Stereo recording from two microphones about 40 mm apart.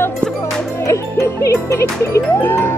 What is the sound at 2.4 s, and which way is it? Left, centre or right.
Music, left.